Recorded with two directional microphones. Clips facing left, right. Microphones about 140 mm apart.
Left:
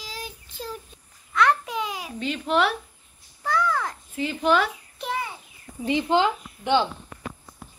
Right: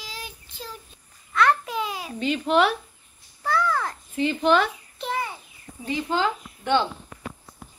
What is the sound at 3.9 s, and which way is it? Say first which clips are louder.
Babbling: right 4 dB; 5° left (ahead or behind).